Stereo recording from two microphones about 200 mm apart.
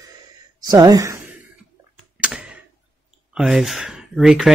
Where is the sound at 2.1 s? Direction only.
5° right (ahead or behind).